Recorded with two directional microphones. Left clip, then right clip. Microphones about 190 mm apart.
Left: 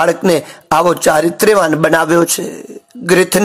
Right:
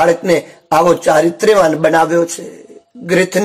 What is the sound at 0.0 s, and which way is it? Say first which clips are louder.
Speech: even; 25° left (ahead or behind).